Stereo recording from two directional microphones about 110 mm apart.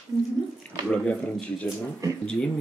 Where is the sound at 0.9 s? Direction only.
10° left (ahead or behind).